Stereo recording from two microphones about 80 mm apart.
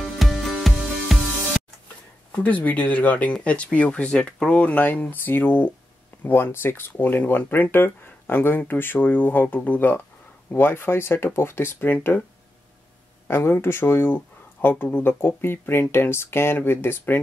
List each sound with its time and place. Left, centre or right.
0.0 s music: centre
2.3 s speech: left
13.3 s speech: left